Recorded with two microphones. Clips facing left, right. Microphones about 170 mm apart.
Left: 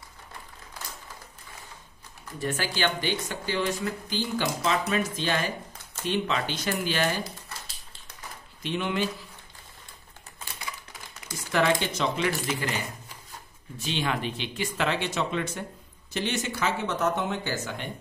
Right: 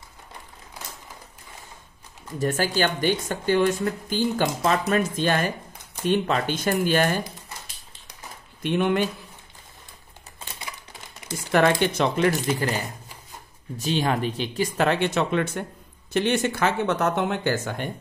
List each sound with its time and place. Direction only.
2.3 s speech: 45° right (ahead or behind)
8.6 s speech: 55° right (ahead or behind)
11.5 s speech: 55° right (ahead or behind)
12.4 s speech: 35° right (ahead or behind); by 17.8 s 55° right (ahead or behind)